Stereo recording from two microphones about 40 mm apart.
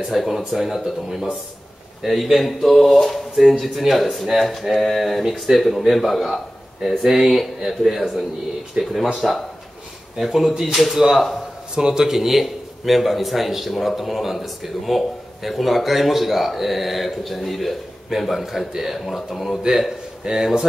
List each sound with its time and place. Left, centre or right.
0.1 s speech: centre
2.0 s speech: centre
8.8 s speech: right
9.2 s speech: centre
20.2 s speech: centre